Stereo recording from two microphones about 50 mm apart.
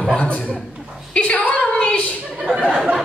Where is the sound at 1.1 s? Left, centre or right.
Left.